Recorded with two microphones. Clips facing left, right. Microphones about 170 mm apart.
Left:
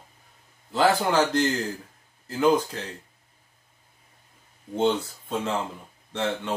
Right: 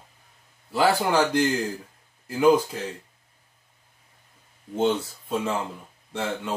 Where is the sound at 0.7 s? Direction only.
10° right (ahead or behind).